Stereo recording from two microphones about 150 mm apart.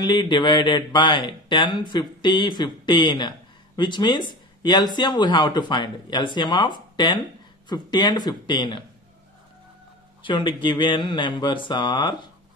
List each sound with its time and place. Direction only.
0.0 s speech: 30° left (ahead or behind)
10.2 s speech: 30° left (ahead or behind)